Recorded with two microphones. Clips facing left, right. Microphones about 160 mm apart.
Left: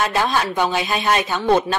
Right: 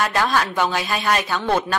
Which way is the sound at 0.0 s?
15° left (ahead or behind).